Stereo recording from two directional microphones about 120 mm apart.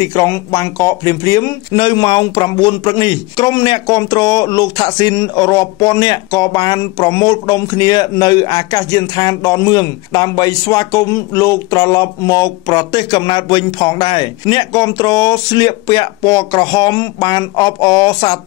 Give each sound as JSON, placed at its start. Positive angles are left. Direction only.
{"t": 0.0, "sound": "speech", "side_deg": 25}
{"t": 1.8, "sound": "speech", "side_deg": 40}